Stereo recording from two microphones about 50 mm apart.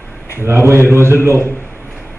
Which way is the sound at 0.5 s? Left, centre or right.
Right.